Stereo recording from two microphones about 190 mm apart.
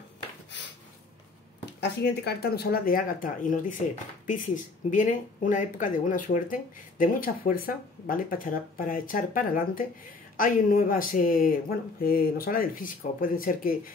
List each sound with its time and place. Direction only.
1.8 s speech: 60° left (ahead or behind)
4.9 s speech: 40° left (ahead or behind)